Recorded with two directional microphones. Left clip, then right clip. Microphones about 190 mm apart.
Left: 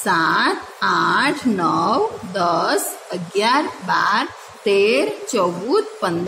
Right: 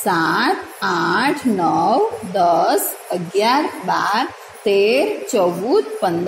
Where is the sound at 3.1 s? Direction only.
Centre (ahead or behind).